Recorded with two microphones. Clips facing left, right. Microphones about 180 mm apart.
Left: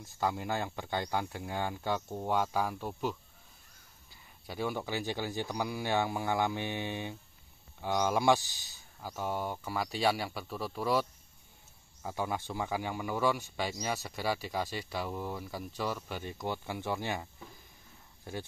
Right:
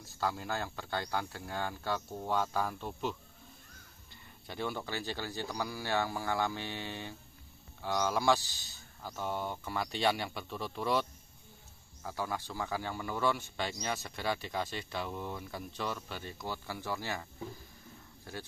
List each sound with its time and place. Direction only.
0.2 s speech: 15° left (ahead or behind)
12.0 s speech: 20° left (ahead or behind)